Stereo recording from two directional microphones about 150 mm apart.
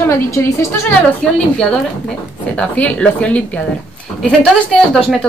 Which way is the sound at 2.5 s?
10° left (ahead or behind).